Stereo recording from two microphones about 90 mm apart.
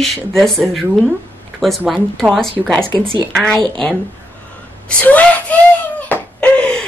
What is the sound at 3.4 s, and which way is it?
Speech, 10° left (ahead or behind).